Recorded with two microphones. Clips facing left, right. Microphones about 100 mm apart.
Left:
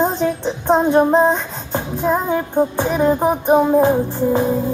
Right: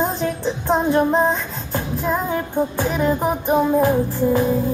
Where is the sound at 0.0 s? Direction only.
25° left (ahead or behind).